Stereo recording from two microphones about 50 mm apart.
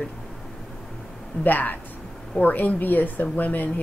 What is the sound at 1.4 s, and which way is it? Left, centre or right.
A woman's voice, left.